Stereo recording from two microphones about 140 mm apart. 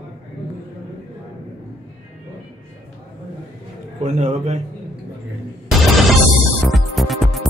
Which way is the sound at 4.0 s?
55° right (ahead or behind).